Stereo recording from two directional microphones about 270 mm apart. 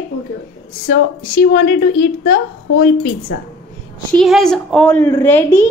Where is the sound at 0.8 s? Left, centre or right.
Left.